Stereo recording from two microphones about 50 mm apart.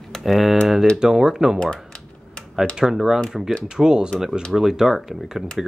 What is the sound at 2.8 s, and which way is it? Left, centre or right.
Speech, centre.